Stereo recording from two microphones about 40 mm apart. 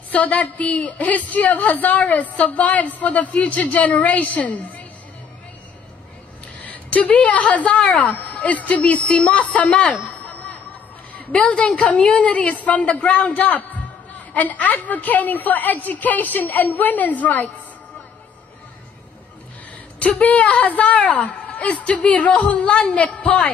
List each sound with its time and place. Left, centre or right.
0.1 s a woman's voice: left
6.6 s a woman's voice: left
11.1 s a sound: left
11.6 s a woman's voice: left
20.0 s a woman's voice: left